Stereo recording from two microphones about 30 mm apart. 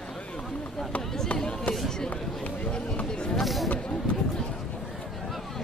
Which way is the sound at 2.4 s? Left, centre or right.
Left.